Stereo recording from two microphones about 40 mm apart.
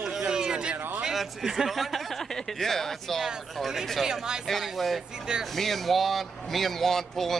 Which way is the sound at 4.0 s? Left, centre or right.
Centre.